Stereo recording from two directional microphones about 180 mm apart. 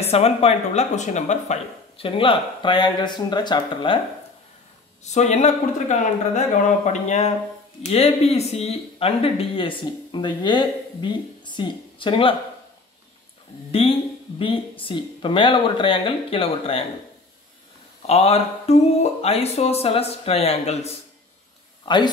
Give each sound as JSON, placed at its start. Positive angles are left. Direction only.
{"t": 0.0, "sound": "speech", "side_deg": 35}
{"t": 5.0, "sound": "speech", "side_deg": 40}
{"t": 13.7, "sound": "speech", "side_deg": 30}
{"t": 18.0, "sound": "speech", "side_deg": 35}
{"t": 21.8, "sound": "speech", "side_deg": 25}